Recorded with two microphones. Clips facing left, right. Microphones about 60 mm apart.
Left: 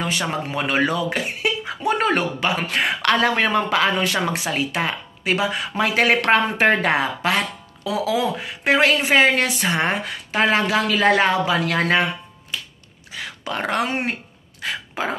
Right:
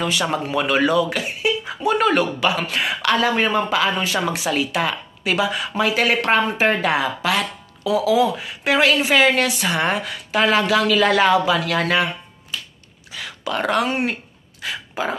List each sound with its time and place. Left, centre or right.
0.0 s speech: left
5.8 s speech: left
13.1 s speech: left
14.6 s a sound: left